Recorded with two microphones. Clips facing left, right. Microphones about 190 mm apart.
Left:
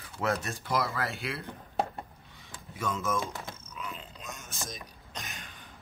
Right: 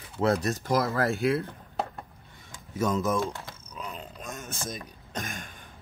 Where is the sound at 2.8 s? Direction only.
40° right (ahead or behind).